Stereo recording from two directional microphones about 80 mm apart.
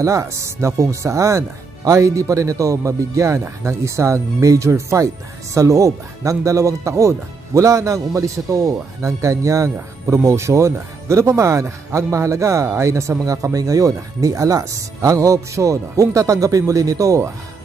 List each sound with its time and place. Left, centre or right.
0.0 s speech: right